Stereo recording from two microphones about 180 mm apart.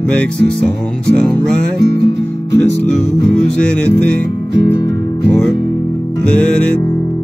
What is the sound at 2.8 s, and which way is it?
Music, 5° left (ahead or behind).